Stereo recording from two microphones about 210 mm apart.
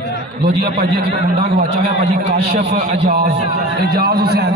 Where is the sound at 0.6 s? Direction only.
45° right (ahead or behind).